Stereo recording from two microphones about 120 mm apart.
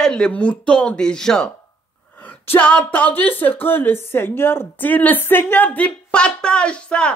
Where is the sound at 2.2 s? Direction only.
15° left (ahead or behind).